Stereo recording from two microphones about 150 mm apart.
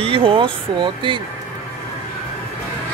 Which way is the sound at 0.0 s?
40° right (ahead or behind).